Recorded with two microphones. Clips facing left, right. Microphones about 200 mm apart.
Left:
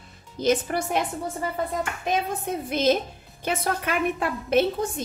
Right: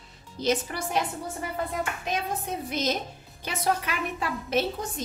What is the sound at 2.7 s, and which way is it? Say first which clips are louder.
A woman's voice: left 8 dB; 55° left (ahead or behind).